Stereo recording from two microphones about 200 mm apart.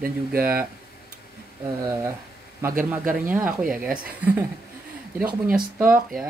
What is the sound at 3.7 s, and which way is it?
Speech, 5° right (ahead or behind).